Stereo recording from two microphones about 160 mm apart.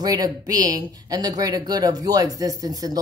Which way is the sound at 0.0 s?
25° right (ahead or behind).